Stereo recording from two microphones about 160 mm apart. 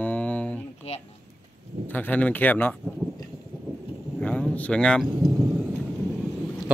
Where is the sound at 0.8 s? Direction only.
40° left (ahead or behind).